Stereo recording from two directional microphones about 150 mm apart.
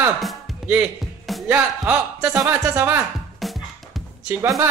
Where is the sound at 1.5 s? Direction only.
10° right (ahead or behind).